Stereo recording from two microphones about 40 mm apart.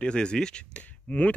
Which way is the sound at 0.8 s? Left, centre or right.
Left.